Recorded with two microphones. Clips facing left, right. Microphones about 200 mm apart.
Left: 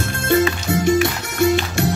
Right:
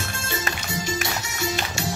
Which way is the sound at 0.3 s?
60° left (ahead or behind).